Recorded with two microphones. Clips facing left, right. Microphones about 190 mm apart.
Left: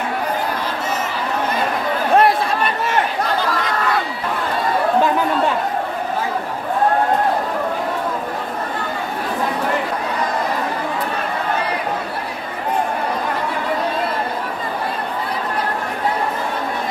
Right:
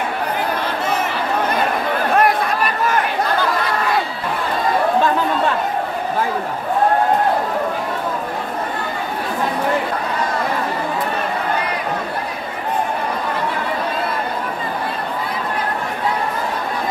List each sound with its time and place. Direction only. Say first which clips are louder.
2.1 s chatter: left 3 dB; 30° left (ahead or behind)